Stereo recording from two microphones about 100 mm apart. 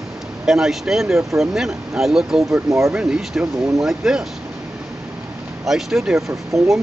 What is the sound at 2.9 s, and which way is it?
Speech, 5° right (ahead or behind).